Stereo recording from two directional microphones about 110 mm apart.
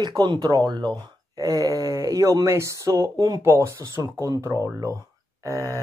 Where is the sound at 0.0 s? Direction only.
40° right (ahead or behind).